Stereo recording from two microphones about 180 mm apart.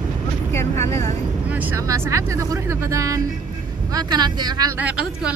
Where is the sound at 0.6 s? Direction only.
15° left (ahead or behind).